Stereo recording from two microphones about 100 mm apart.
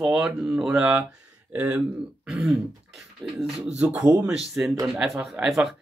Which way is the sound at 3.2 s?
50° right (ahead or behind).